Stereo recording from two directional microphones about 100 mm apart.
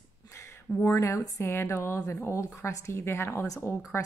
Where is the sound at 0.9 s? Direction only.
30° left (ahead or behind).